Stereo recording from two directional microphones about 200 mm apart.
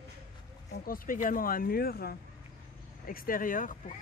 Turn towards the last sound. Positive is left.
turn(degrees=40)  # may be behind; listen again after turning